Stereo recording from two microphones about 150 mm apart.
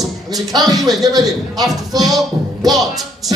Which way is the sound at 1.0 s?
25° right (ahead or behind).